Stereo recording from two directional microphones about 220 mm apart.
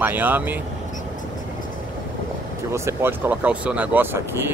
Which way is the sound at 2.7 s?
10° right (ahead or behind).